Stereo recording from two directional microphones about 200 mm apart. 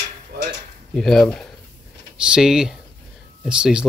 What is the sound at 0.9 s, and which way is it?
Speech, centre (ahead or behind).